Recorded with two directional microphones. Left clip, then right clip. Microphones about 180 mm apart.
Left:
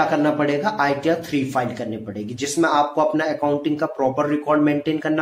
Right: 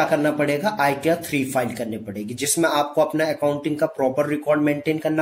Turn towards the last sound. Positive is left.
turn(degrees=-30)  # may be behind; listen again after turning